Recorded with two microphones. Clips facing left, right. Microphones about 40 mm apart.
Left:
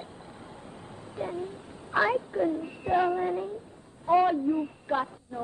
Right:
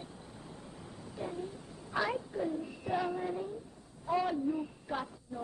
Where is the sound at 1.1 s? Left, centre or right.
Left.